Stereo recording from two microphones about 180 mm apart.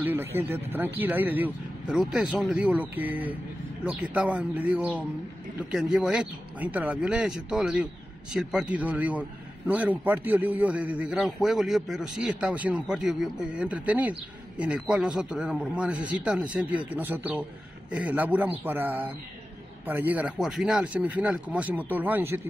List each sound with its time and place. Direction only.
0.0 s a man's voice: 15° right (ahead or behind)